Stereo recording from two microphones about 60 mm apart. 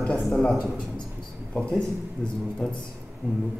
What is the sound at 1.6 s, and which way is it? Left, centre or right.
Speech, centre.